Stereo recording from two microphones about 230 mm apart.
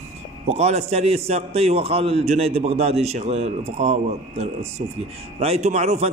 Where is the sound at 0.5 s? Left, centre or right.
Right.